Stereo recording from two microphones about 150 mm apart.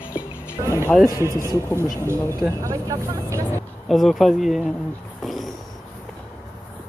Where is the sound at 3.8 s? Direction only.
Centre (ahead or behind).